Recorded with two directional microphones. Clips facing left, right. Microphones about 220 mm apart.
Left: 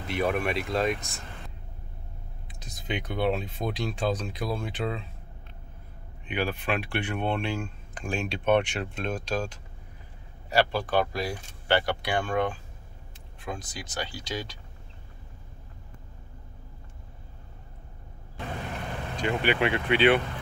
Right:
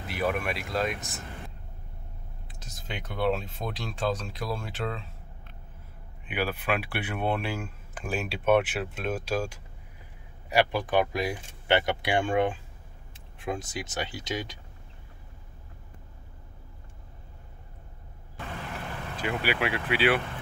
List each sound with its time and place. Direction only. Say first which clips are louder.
0.1 s speech: left 3 dB; centre (ahead or behind)
2.4 s speech: left 6 dB; centre (ahead or behind)
6.2 s speech: even; 5° right (ahead or behind)
19.1 s speech: left 3 dB; 5° right (ahead or behind)